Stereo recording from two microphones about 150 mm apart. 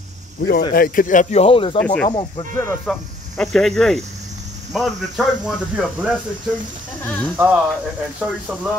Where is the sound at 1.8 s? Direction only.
10° left (ahead or behind).